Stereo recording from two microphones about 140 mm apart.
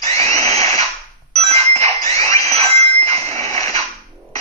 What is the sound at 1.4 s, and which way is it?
Music, 50° right (ahead or behind).